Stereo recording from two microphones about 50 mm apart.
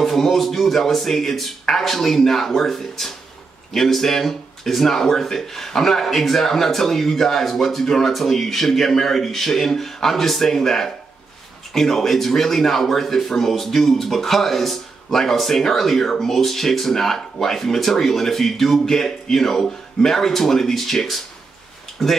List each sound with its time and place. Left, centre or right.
0.0 s speech: centre